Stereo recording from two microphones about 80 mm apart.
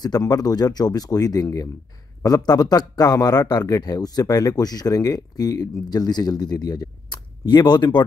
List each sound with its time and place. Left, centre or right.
0.0 s speech: left